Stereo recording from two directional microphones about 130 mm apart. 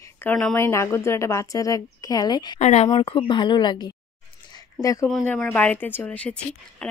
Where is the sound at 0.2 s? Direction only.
5° left (ahead or behind).